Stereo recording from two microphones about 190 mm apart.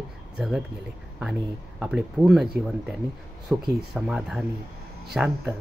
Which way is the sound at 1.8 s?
5° right (ahead or behind).